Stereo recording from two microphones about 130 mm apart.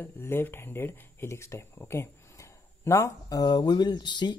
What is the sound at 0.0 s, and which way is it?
Speech, 20° left (ahead or behind).